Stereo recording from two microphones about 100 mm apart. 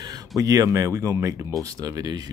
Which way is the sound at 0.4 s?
35° right (ahead or behind).